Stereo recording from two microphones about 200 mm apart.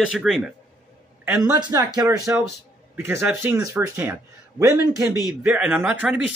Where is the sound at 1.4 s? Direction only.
20° right (ahead or behind).